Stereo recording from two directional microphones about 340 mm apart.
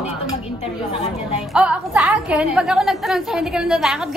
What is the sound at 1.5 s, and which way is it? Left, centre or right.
A woman's voice, centre.